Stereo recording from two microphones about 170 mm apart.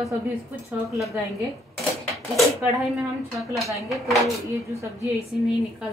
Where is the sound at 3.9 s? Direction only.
Centre (ahead or behind).